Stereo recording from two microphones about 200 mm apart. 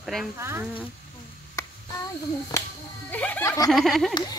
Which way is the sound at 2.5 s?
15° left (ahead or behind).